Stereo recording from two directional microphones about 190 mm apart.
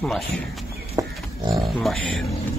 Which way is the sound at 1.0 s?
15° right (ahead or behind).